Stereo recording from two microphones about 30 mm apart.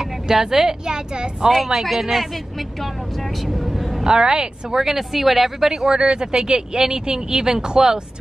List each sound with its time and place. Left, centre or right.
0.0 s speech: centre
1.9 s speech: centre
4.0 s speech: right
5.9 s speech: right